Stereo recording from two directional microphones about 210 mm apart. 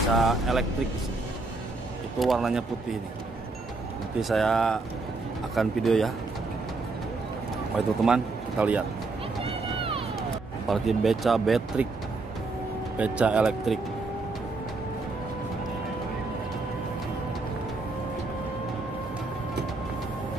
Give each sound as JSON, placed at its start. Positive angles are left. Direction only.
{"t": 0.1, "sound": "speech", "side_deg": 0}
{"t": 2.1, "sound": "speech", "side_deg": 0}
{"t": 4.2, "sound": "speech", "side_deg": 0}
{"t": 7.7, "sound": "a man's voice", "side_deg": -5}
{"t": 9.4, "sound": "run", "side_deg": -25}
{"t": 10.7, "sound": "speech", "side_deg": 0}
{"t": 12.9, "sound": "speech", "side_deg": -5}